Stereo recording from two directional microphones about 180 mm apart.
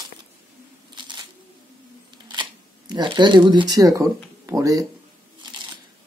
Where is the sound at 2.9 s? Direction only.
25° right (ahead or behind).